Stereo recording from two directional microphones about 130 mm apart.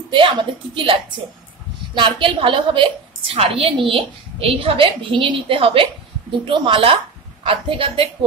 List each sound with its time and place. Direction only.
0.1 s a woman's voice: 40° right (ahead or behind)